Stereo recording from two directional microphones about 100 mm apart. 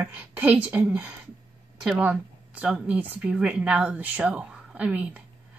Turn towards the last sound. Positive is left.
turn(degrees=-15)  # may be behind; listen again after turning